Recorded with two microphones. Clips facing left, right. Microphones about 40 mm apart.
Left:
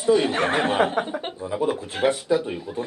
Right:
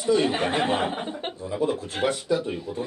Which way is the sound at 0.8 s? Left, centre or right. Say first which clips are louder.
Left 6 dB; left.